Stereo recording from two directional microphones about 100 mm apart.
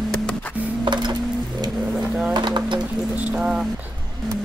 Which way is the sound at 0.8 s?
50° right (ahead or behind).